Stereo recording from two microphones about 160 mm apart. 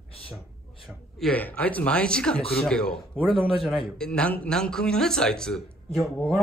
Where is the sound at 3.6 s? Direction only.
Centre (ahead or behind).